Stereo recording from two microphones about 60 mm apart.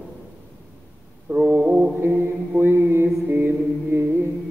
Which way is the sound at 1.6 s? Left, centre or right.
Centre.